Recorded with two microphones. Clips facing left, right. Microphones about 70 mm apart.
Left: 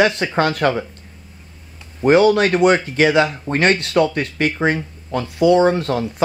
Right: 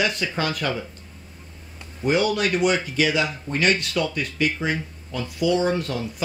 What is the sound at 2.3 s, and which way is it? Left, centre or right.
Speech, left.